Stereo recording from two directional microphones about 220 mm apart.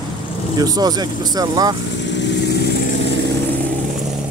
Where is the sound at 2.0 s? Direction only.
55° left (ahead or behind).